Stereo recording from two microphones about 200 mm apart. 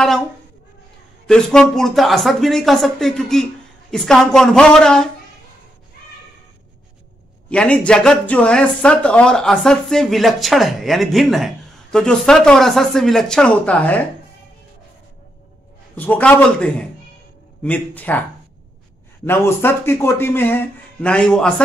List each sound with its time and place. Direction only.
1.2 s speech: 5° left (ahead or behind)
7.4 s speech: 5° left (ahead or behind)
16.0 s speech: 10° left (ahead or behind)
19.2 s speech: 10° left (ahead or behind)